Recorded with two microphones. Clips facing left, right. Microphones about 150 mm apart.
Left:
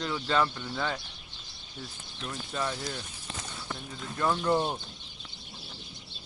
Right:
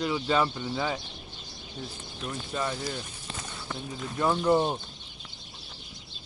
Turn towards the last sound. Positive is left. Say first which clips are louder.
# right 3 dB
turn(degrees=-10)  # may be behind; listen again after turning